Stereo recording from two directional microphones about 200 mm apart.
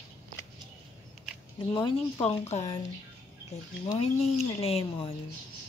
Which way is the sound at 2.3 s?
35° left (ahead or behind).